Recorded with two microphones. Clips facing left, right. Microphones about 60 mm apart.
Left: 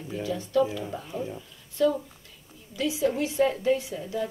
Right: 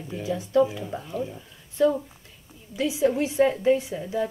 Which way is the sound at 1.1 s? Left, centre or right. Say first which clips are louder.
Right 5 dB; centre.